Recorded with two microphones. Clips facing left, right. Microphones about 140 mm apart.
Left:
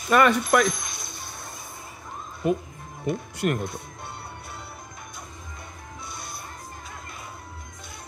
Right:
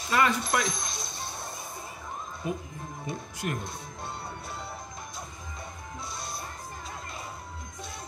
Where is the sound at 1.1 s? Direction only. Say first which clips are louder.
Right 2 dB; 25° right (ahead or behind).